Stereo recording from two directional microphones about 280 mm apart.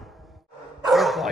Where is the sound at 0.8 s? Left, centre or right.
Centre.